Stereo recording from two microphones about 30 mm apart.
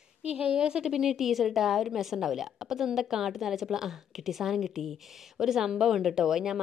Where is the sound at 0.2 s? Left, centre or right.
Right.